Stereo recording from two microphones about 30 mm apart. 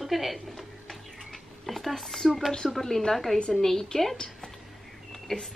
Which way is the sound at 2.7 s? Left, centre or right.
Centre.